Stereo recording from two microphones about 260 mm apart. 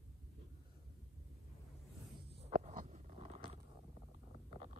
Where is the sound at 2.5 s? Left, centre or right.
Right.